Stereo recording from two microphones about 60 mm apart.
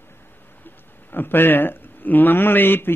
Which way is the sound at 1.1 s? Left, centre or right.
Left.